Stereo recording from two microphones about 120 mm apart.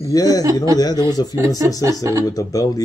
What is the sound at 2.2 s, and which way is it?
Speech, 30° left (ahead or behind).